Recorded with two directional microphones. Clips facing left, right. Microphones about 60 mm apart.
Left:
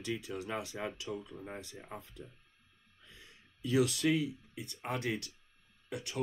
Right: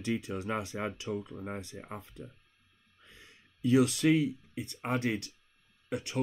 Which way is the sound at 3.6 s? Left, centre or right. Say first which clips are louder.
Right 5 dB; right.